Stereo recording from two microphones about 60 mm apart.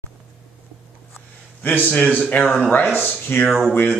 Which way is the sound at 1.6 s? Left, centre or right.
Left.